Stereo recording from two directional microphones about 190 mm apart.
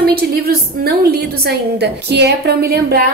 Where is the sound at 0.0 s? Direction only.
55° right (ahead or behind).